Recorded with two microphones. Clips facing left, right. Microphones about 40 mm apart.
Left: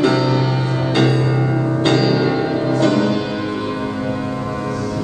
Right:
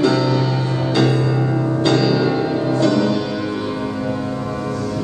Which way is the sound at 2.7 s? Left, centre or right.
Left.